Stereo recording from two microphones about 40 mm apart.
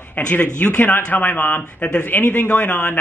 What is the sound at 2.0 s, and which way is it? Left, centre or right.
Speech, left.